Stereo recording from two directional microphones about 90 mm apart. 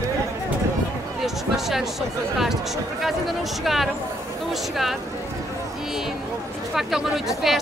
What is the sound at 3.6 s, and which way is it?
Speech, centre (ahead or behind).